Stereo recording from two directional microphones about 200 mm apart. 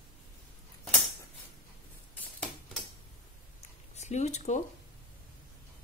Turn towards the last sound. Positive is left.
turn(degrees=35)  # may be behind; listen again after turning